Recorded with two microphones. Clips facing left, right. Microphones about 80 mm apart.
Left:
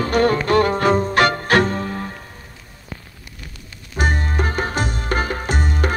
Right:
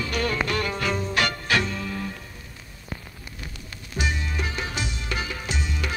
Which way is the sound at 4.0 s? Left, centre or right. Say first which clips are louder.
Left 7 dB; left.